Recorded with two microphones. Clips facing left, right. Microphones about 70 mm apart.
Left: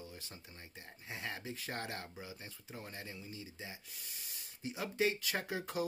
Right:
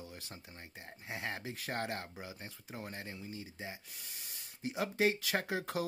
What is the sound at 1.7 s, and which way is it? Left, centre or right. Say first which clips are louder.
Speech: right 5 dB; right.